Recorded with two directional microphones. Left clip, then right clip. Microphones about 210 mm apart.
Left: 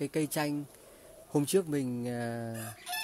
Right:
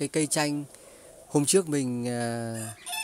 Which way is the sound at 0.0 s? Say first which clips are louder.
Right 5 dB; 20° right (ahead or behind).